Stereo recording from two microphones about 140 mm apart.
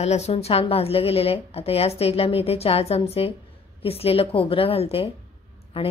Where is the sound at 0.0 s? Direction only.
50° left (ahead or behind).